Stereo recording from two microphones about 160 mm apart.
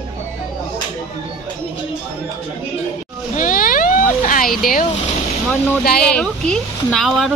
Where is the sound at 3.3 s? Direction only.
55° left (ahead or behind).